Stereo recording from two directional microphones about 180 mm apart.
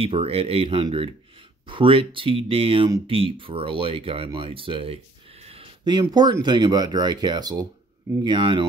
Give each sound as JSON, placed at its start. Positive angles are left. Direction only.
{"t": 0.0, "sound": "speech", "side_deg": -30}